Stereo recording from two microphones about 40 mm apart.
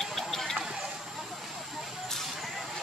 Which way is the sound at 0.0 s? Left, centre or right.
Centre.